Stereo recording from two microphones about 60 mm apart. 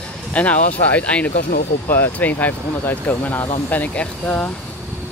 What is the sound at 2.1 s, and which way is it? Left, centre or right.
Speech, left.